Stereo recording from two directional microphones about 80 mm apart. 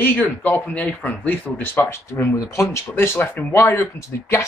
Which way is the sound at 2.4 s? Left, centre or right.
Left.